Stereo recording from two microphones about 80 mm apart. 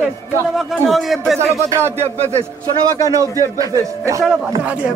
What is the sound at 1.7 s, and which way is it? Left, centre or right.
Speech, right.